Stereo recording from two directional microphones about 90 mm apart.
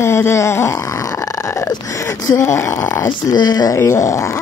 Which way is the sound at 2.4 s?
30° left (ahead or behind).